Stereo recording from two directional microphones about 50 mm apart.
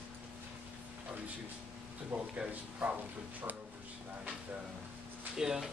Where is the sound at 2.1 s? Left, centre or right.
Right.